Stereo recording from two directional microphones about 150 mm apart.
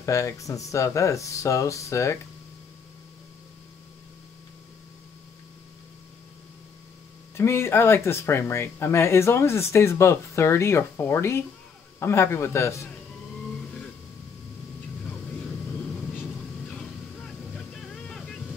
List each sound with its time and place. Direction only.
0.0 s speech: 20° left (ahead or behind)
7.3 s speech: 15° left (ahead or behind)
16.6 s vehicle: 5° left (ahead or behind)